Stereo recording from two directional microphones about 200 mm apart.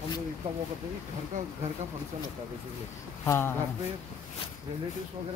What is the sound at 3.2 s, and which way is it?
Speech, 10° left (ahead or behind).